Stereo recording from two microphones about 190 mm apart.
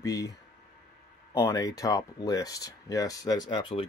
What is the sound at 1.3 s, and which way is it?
Speech, 20° left (ahead or behind).